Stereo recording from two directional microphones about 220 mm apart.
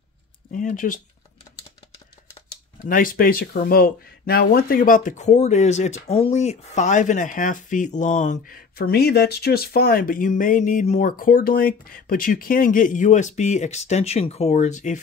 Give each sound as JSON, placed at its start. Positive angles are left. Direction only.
{"t": 0.5, "sound": "speech", "side_deg": 35}
{"t": 2.8, "sound": "speech", "side_deg": 40}